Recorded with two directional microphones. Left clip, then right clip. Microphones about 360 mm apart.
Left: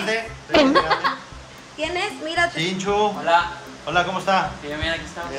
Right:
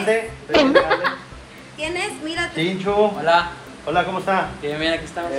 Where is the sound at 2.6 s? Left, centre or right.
Centre.